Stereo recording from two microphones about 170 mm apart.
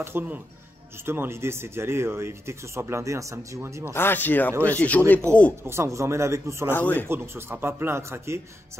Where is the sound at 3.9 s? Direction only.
10° left (ahead or behind).